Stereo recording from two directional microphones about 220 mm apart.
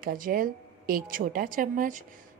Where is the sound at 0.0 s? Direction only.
40° right (ahead or behind).